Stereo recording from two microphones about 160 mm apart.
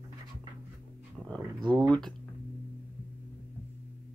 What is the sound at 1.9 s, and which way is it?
Speech, 5° left (ahead or behind).